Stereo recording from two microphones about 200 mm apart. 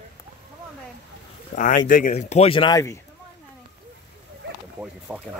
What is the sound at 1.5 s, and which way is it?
Speech, 55° left (ahead or behind).